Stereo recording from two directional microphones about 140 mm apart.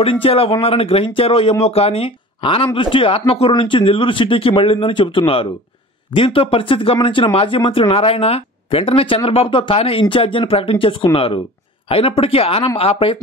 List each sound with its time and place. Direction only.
0.0 s speech: 40° left (ahead or behind)